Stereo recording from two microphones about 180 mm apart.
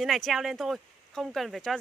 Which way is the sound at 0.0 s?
Centre (ahead or behind).